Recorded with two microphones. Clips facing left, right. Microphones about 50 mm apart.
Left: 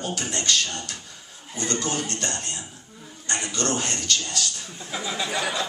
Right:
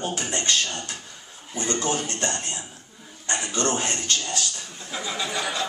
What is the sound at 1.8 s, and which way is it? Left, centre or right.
Speech, right.